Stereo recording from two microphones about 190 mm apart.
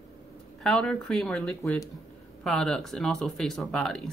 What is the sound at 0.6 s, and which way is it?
A woman's voice, centre (ahead or behind).